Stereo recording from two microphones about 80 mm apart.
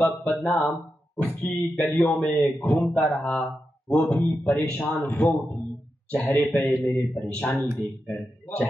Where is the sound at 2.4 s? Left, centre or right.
Centre.